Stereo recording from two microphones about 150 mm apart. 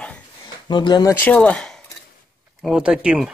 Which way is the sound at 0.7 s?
30° left (ahead or behind).